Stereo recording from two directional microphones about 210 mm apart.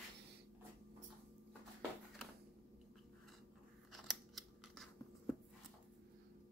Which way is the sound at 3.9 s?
Centre (ahead or behind).